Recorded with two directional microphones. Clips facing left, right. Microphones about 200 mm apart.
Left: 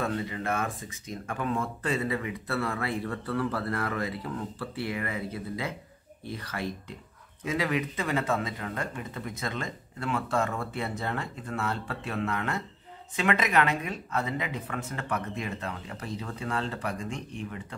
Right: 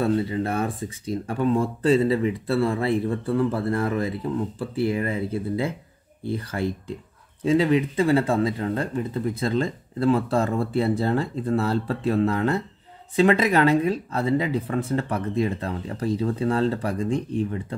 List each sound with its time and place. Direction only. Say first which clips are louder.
0.0 s speech: right 8 dB; 30° right (ahead or behind)